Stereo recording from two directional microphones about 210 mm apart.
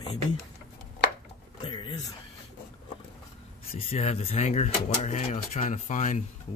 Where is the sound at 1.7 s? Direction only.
20° left (ahead or behind).